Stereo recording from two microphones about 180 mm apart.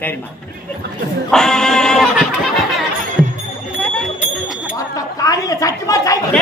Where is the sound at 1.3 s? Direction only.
5° left (ahead or behind).